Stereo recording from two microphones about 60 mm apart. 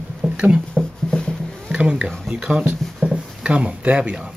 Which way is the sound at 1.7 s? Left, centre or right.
Centre.